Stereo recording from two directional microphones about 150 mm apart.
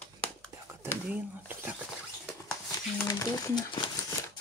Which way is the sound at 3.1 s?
25° left (ahead or behind).